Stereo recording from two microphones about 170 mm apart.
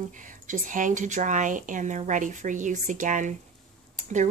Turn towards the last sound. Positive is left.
turn(degrees=-45)  # may be behind; listen again after turning